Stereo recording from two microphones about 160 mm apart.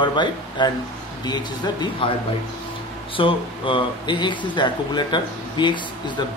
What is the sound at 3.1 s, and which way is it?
Speech, 30° left (ahead or behind).